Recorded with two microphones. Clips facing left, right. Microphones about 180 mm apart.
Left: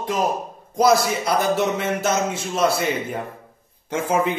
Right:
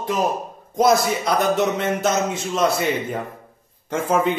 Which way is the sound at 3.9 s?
55° right (ahead or behind).